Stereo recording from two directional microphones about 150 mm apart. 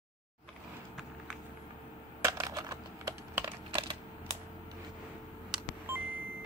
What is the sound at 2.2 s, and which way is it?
Typing, 25° right (ahead or behind).